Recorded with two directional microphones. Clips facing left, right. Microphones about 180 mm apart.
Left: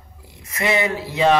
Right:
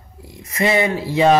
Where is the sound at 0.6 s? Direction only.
30° right (ahead or behind).